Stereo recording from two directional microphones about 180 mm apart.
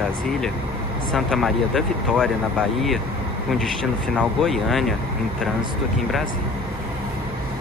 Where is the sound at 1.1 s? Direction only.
Centre (ahead or behind).